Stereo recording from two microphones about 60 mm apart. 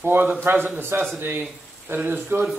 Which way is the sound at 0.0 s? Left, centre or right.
Right.